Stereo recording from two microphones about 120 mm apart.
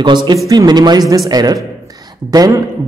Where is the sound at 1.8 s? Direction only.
30° right (ahead or behind).